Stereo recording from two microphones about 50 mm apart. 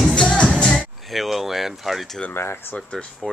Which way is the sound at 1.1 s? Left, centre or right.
Centre.